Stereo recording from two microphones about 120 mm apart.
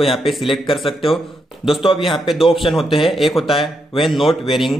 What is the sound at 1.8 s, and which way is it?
Speech, 45° left (ahead or behind).